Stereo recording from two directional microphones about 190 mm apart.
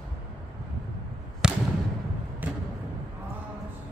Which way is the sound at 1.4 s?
5° right (ahead or behind).